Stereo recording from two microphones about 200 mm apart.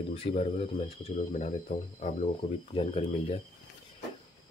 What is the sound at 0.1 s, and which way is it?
Speech, 30° left (ahead or behind).